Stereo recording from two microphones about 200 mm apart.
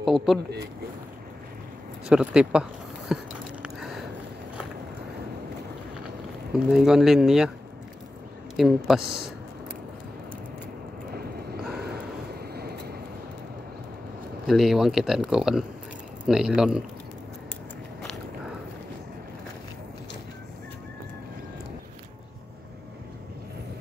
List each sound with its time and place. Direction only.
0.0 s speech: centre (ahead or behind)
2.0 s speech: 5° right (ahead or behind)
3.6 s a sound: centre (ahead or behind)
6.5 s speech: 5° right (ahead or behind)
8.5 s speech: centre (ahead or behind)
11.8 s vehicle: 50° right (ahead or behind)
14.5 s speech: centre (ahead or behind)